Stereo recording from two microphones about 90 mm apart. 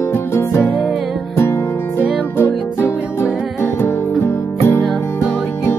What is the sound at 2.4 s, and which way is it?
Music, 25° left (ahead or behind).